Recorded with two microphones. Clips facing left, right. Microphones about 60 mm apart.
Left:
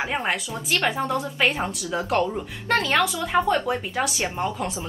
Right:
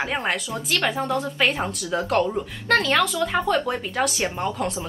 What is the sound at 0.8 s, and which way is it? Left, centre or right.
A woman's voice, centre.